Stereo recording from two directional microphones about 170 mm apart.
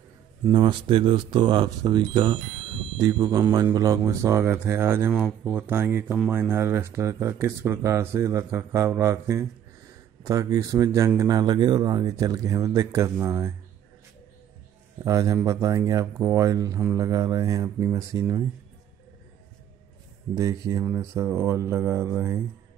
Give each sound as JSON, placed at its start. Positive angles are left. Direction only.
{"t": 0.5, "sound": "speech", "side_deg": -30}
{"t": 15.0, "sound": "speech", "side_deg": -20}
{"t": 20.3, "sound": "speech", "side_deg": -20}